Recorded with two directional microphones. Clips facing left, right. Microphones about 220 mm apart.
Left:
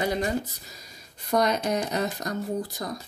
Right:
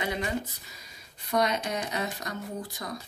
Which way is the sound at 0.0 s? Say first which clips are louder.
Left 5 dB; 40° left (ahead or behind).